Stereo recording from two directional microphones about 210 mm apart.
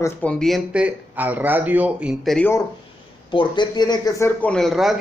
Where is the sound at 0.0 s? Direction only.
5° left (ahead or behind).